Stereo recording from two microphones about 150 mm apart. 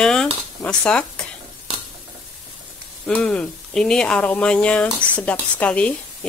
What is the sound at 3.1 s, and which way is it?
Speech, 5° left (ahead or behind).